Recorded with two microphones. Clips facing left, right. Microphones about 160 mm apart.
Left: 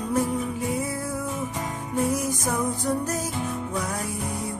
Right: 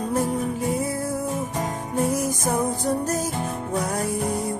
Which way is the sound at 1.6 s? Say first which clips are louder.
Right 2 dB; 40° right (ahead or behind).